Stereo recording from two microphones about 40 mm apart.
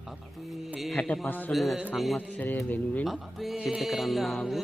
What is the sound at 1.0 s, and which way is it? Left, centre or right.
Speech, left.